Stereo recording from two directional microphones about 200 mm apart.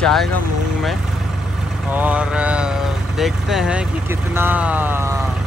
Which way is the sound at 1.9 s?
5° right (ahead or behind).